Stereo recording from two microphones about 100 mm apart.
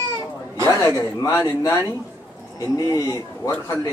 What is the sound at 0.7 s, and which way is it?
Speech, 30° left (ahead or behind).